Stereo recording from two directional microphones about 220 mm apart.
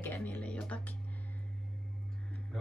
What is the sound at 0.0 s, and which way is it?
Music, 10° left (ahead or behind).